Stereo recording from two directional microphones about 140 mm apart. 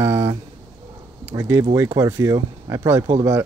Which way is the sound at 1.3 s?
20° right (ahead or behind).